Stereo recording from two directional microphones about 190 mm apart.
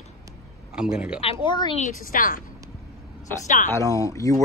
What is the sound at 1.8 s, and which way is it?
Speech, 45° left (ahead or behind).